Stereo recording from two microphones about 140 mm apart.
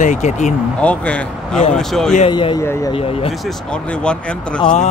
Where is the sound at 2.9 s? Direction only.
45° left (ahead or behind).